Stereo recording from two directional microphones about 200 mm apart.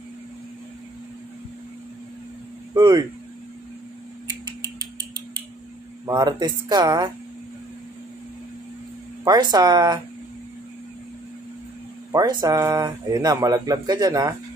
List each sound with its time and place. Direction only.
2.7 s speech: 20° right (ahead or behind)
6.0 s speech: 20° right (ahead or behind)
9.2 s speech: 20° right (ahead or behind)
12.1 s speech: 20° right (ahead or behind)